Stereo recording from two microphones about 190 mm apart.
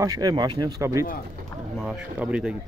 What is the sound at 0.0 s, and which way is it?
Speech, 20° right (ahead or behind).